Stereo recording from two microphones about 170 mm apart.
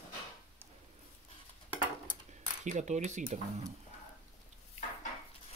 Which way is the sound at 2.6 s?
45° right (ahead or behind).